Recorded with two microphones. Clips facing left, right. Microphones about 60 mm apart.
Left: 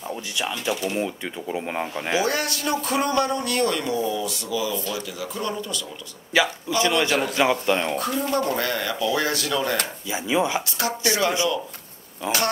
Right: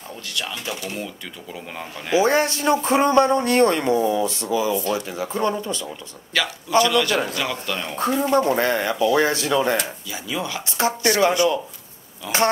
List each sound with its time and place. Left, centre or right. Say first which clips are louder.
0.1 s speech: left 1 dB; centre
2.2 s a man's voice: right 6 dB; right
6.4 s a man's voice: right 2 dB; centre
8.0 s speech: right 5 dB; right
10.0 s speech: left 5 dB; left
10.8 s speech: right 6 dB; right
12.2 s speech: even; left